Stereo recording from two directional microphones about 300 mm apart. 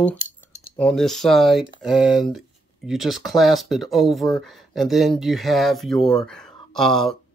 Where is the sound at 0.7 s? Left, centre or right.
Centre.